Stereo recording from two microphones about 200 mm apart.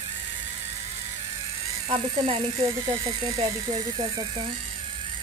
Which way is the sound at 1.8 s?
30° right (ahead or behind).